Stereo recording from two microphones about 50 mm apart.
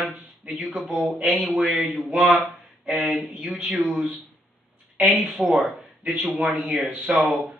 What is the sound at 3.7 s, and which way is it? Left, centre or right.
Speech, centre.